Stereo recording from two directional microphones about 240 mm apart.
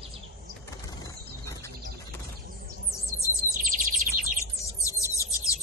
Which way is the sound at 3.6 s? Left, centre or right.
Right.